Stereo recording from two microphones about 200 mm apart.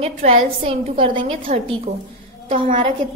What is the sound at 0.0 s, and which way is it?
A woman's voice, 30° right (ahead or behind).